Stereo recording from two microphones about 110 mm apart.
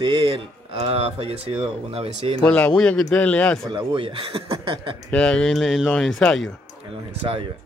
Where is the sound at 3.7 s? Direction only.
50° right (ahead or behind).